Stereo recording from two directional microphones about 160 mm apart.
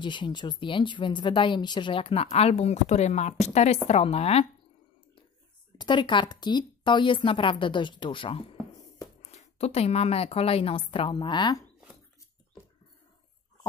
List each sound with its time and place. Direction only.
0.0 s a woman's voice: 30° left (ahead or behind)
5.8 s speech: 30° left (ahead or behind)
8.7 s a sound: 20° left (ahead or behind)
9.2 s a woman's voice: 45° left (ahead or behind); by 11.6 s 25° left (ahead or behind)